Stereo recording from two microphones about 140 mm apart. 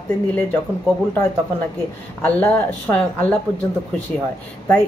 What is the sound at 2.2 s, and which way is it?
Speech, 10° left (ahead or behind).